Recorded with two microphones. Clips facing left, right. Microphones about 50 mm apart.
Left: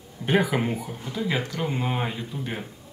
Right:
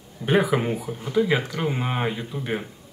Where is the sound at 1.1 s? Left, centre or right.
Centre.